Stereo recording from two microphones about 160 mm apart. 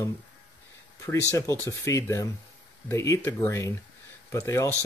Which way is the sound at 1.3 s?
20° left (ahead or behind).